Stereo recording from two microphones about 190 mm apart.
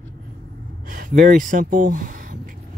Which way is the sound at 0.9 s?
45° right (ahead or behind).